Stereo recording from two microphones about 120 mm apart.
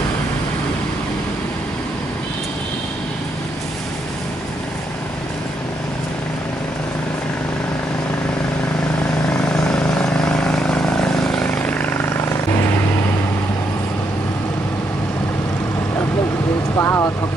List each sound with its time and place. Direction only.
9.5 s vehicle: 5° left (ahead or behind)
16.7 s vehicle: 20° left (ahead or behind)